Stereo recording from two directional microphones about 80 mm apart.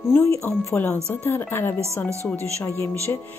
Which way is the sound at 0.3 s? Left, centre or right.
Left.